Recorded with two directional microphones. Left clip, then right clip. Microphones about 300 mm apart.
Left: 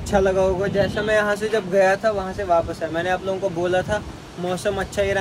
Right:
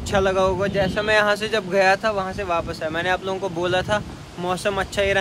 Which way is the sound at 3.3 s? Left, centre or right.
Centre.